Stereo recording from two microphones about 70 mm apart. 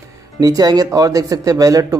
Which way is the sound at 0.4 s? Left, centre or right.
Right.